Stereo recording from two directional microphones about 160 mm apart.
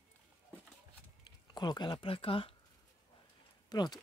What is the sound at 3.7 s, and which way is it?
Speech, 25° left (ahead or behind).